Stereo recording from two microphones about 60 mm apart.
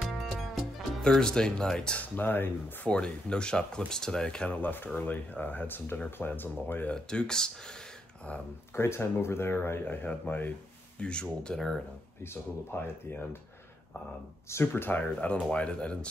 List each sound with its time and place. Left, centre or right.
0.1 s music: centre
1.0 s speech: centre
2.0 s speech: left
2.9 s speech: centre
4.5 s speech: left
6.9 s speech: centre
8.7 s speech: left
10.0 s speech: left
11.0 s speech: centre
12.2 s speech: left
14.5 s speech: left; by 16.1 s centre